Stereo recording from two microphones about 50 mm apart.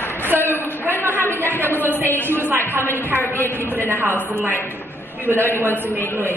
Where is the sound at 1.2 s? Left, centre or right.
Left.